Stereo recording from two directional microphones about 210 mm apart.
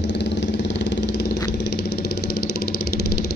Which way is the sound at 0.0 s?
55° left (ahead or behind).